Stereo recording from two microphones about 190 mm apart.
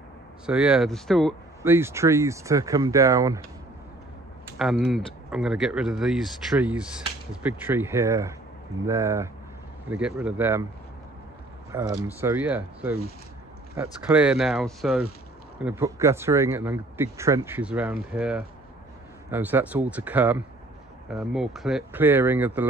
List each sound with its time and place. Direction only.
0.5 s speech: 5° right (ahead or behind)
1.6 s speech: 10° right (ahead or behind)
4.6 s speech: centre (ahead or behind)
11.7 s speech: 10° right (ahead or behind)
14.0 s speech: 5° right (ahead or behind)
15.6 s speech: 15° right (ahead or behind)